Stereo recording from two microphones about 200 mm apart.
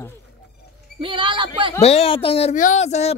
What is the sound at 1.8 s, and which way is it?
A woman's voice, 30° left (ahead or behind).